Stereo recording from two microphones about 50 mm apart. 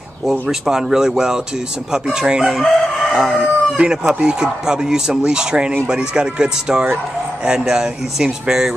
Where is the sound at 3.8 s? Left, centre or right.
Centre.